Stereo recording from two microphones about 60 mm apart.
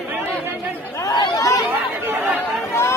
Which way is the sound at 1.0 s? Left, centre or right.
Left.